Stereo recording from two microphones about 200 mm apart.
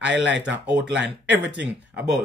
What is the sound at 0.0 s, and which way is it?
Speech, 65° right (ahead or behind).